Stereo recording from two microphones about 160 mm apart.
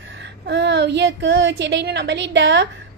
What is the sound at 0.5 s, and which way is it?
A child's voice, 90° right.